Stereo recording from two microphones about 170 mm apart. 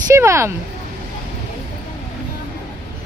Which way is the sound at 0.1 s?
15° right (ahead or behind).